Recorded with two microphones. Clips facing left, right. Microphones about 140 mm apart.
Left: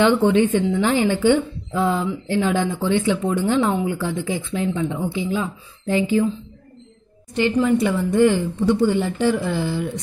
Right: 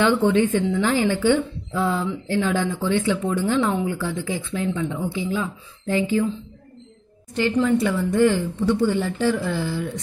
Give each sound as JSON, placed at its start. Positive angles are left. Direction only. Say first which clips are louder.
{"t": 0.0, "sound": "speech", "louder": "left 2 dB", "side_deg": 20}
{"t": 7.3, "sound": "speech", "louder": "left 2 dB", "side_deg": 15}